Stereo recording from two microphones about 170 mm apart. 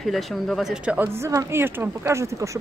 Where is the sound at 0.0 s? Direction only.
Centre (ahead or behind).